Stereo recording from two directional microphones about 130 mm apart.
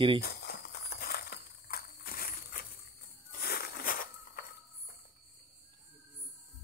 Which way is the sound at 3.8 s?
90° left.